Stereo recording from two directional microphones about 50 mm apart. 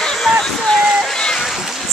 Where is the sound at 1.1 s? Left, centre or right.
Centre.